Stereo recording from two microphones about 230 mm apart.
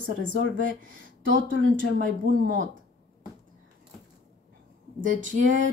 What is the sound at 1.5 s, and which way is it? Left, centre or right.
Speech, right.